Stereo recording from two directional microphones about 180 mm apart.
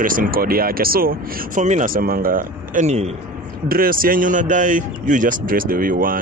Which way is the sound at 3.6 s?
55° right (ahead or behind).